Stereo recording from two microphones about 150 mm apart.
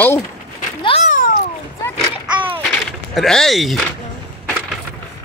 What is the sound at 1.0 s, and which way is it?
Babbling, 60° left (ahead or behind).